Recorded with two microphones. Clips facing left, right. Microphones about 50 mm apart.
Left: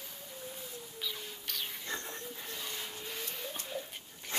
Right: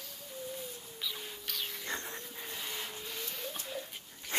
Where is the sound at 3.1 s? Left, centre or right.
Centre.